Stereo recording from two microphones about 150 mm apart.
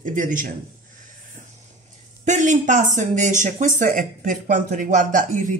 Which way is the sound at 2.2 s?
55° right (ahead or behind).